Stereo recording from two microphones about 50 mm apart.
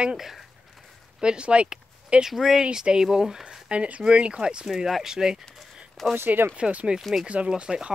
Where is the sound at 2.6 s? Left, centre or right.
Centre.